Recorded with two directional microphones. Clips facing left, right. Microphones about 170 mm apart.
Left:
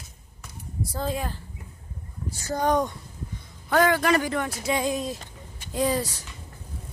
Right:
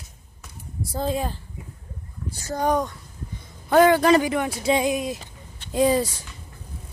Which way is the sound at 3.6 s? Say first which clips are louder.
Right 5 dB; 25° right (ahead or behind).